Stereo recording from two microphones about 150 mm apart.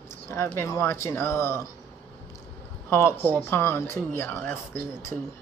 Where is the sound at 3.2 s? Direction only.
15° left (ahead or behind).